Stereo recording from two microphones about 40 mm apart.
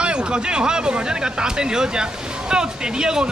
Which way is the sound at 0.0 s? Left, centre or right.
Right.